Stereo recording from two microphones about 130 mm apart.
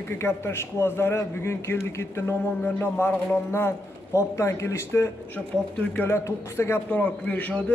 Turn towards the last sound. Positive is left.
turn(degrees=10)  # may be behind; listen again after turning